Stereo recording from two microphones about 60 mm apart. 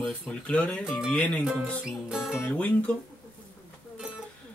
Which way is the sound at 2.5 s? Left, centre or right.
Left.